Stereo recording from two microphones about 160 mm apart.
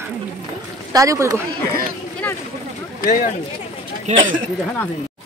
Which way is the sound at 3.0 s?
55° left (ahead or behind).